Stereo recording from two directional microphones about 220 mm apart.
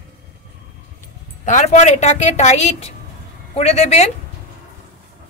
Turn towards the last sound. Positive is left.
turn(degrees=30)  # may be behind; listen again after turning